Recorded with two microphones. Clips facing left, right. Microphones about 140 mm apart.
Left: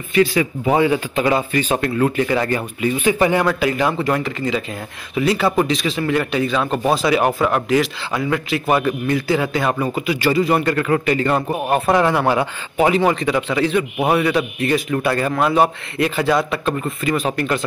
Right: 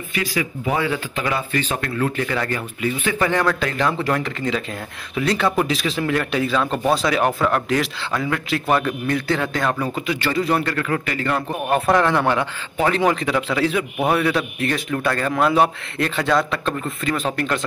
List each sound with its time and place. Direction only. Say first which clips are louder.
0.1 s a man's voice: left 9 dB; 30° left (ahead or behind); by 10.6 s 10° left (ahead or behind)
10.6 s speech: left 5 dB; 20° left (ahead or behind)
11.7 s a man's voice: left 1 dB; 5° left (ahead or behind)
13.0 s a man's voice: left 2 dB; centre (ahead or behind)